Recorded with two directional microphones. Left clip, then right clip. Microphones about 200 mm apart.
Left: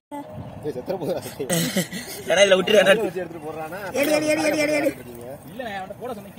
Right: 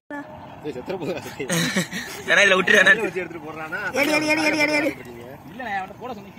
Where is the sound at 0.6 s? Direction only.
45° left (ahead or behind).